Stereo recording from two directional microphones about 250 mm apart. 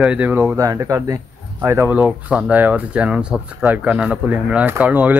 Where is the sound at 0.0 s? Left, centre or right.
Centre.